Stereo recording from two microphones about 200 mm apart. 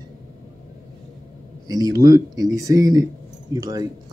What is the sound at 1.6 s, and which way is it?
A man's voice, 20° right (ahead or behind).